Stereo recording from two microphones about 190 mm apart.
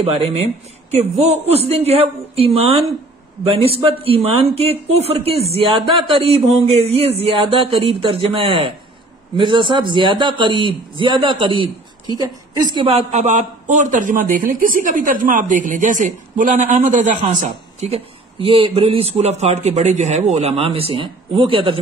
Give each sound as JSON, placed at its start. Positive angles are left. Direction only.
{"t": 0.0, "sound": "a man's voice", "side_deg": -30}
{"t": 17.7, "sound": "a man's voice", "side_deg": -30}